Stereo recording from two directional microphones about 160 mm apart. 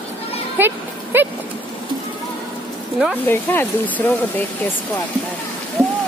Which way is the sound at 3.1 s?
10° left (ahead or behind).